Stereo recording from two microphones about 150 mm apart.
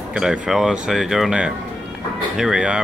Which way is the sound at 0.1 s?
5° right (ahead or behind).